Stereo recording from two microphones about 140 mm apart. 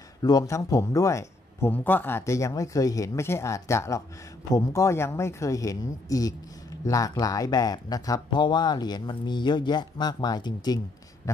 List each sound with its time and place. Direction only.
0.2 s speech: 25° left (ahead or behind)